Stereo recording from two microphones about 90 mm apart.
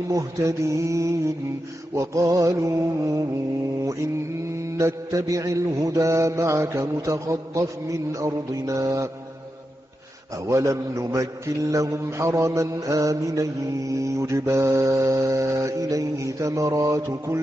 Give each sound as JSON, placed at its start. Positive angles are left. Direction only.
{"t": 0.1, "sound": "a man's voice", "side_deg": -35}
{"t": 10.3, "sound": "a man's voice", "side_deg": -35}